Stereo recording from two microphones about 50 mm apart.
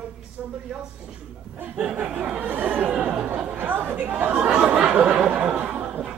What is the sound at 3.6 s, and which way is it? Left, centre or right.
Speech, right.